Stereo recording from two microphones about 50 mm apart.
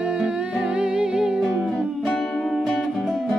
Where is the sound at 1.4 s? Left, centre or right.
Centre.